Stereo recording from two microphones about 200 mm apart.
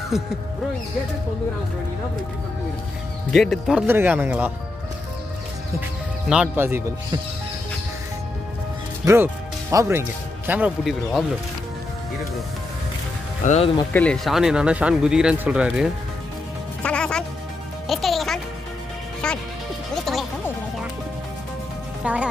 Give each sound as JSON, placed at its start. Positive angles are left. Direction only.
{"t": 0.1, "sound": "speech", "side_deg": 0}
{"t": 3.3, "sound": "speech", "side_deg": 0}
{"t": 5.8, "sound": "speech", "side_deg": -5}
{"t": 9.0, "sound": "speech", "side_deg": -15}
{"t": 13.4, "sound": "speech", "side_deg": 35}
{"t": 13.9, "sound": "speech", "side_deg": 5}
{"t": 16.8, "sound": "music", "side_deg": 5}
{"t": 22.0, "sound": "a woman's voice", "side_deg": -5}